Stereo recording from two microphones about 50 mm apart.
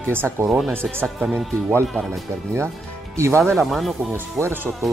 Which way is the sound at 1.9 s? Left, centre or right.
Centre.